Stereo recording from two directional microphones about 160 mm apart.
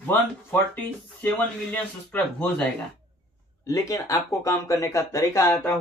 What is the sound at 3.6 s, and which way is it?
Speech, 20° left (ahead or behind).